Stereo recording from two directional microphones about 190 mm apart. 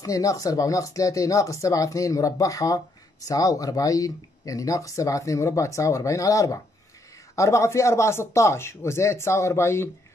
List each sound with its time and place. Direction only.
0.0 s speech: 20° left (ahead or behind)